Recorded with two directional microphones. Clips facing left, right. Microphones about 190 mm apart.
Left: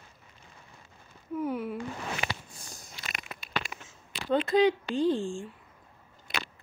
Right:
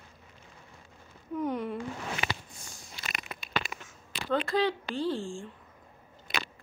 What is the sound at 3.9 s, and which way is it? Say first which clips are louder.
Speech: left 6 dB; 20° left (ahead or behind).